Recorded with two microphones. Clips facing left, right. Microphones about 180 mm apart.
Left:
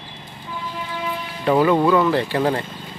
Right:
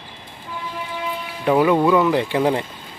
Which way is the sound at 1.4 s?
5° right (ahead or behind).